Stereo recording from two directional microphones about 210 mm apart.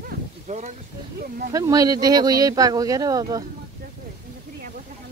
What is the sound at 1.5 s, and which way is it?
Speech, 15° right (ahead or behind).